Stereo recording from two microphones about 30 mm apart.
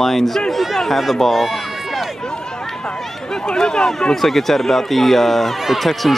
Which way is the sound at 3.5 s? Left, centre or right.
Left.